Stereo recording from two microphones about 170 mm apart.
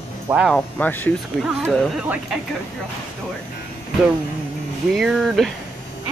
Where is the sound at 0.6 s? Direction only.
10° left (ahead or behind).